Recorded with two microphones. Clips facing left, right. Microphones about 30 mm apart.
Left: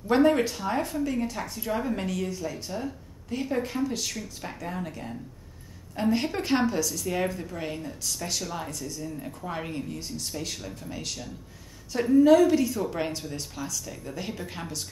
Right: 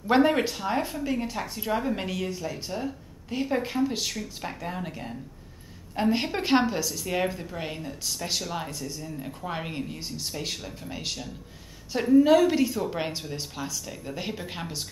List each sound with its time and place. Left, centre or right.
0.0 s speech: centre
9.5 s speech: right